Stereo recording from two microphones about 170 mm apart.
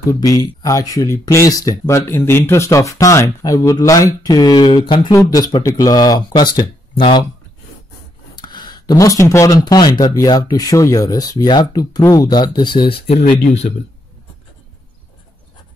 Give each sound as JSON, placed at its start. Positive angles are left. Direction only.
{"t": 0.1, "sound": "speech", "side_deg": 20}
{"t": 8.4, "sound": "speech", "side_deg": 25}